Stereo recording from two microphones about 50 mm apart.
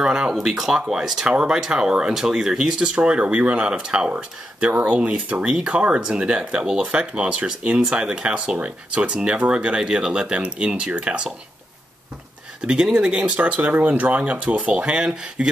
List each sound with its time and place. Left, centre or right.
0.0 s a sound: centre
0.3 s speech: centre
4.1 s speech: right
12.6 s speech: centre